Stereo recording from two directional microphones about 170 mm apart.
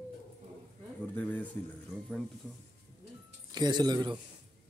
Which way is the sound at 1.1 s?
10° left (ahead or behind).